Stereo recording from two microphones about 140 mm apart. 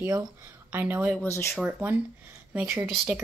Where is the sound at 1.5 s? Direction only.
10° right (ahead or behind).